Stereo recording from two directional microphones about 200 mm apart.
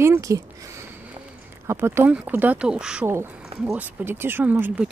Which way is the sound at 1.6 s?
10° right (ahead or behind).